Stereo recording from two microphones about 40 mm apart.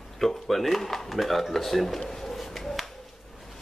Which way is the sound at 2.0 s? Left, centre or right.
Centre.